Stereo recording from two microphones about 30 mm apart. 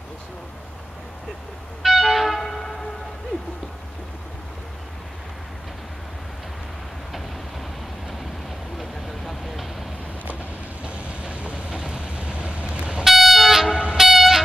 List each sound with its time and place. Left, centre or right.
1.8 s train: centre
8.7 s vehicle: centre
10.8 s train: right
11.9 s vehicle: right
13.0 s train: centre
13.7 s train: right
13.9 s train: centre